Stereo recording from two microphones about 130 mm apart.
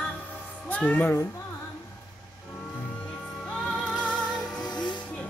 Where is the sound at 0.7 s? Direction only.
10° left (ahead or behind).